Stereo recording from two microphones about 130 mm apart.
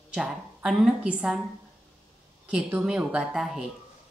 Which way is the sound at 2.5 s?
15° right (ahead or behind).